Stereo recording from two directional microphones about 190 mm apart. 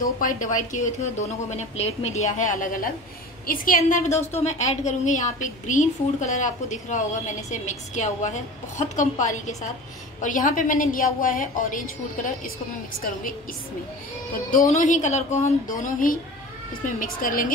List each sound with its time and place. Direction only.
0.0 s a woman's voice: 45° left (ahead or behind)
14.5 s a woman's voice: 45° left (ahead or behind)